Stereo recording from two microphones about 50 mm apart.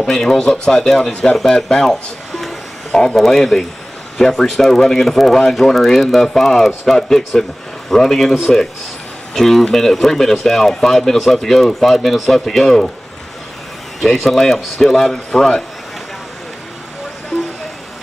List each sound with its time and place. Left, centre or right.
0.0 s speech: centre
1.4 s a sound: centre
3.2 s speech: centre
14.0 s speech: centre
17.3 s vehicle: centre